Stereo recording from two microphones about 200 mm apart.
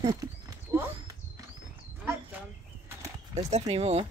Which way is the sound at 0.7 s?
15° right (ahead or behind).